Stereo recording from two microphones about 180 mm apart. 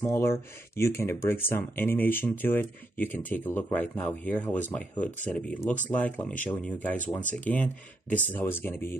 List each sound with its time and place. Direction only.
0.0 s speech: 15° left (ahead or behind)
7.2 s speech: 45° left (ahead or behind)
7.4 s speech: 10° left (ahead or behind)